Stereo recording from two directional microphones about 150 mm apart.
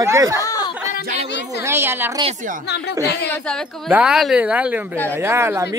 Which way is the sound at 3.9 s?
5° right (ahead or behind).